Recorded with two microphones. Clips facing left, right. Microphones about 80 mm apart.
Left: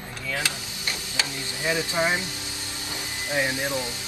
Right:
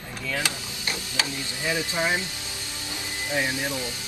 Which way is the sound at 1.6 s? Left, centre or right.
Left.